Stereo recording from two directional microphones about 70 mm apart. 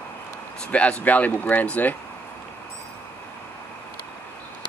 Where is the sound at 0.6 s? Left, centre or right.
Centre.